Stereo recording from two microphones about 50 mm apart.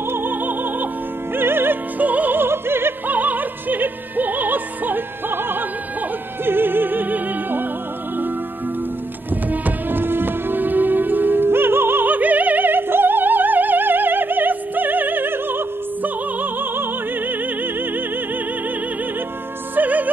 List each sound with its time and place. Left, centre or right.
0.1 s opera: right
1.3 s music: right
2.0 s music: right
2.4 s opera: right
3.1 s music: right
9.3 s music: right
19.7 s music: right